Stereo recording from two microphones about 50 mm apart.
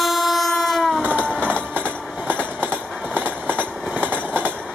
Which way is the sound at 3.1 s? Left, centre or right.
Right.